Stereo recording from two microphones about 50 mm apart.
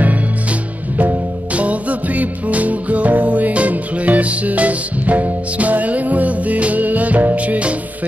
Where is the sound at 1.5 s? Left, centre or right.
Right.